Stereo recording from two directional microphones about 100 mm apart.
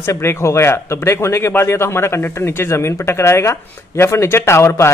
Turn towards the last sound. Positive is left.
turn(degrees=25)  # may be behind; listen again after turning